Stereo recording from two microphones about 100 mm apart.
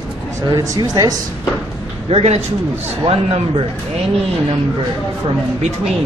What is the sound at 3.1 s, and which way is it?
Speech, 70° right (ahead or behind).